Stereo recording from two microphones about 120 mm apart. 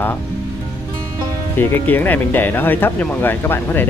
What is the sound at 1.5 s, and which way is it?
Speech, 15° left (ahead or behind).